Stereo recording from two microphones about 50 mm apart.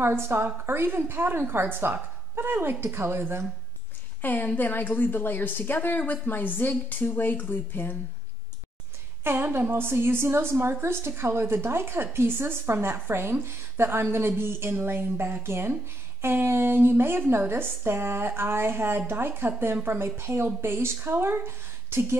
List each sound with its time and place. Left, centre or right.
0.0 s a woman's voice: right
4.2 s a woman's voice: left
9.2 s a woman's voice: right